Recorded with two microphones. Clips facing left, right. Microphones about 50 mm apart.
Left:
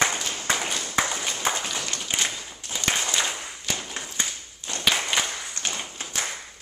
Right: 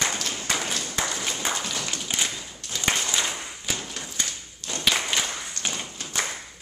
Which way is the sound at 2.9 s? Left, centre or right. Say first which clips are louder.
Even; centre.